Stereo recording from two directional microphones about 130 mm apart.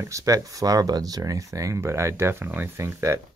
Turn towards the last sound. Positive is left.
turn(degrees=-20)  # may be behind; listen again after turning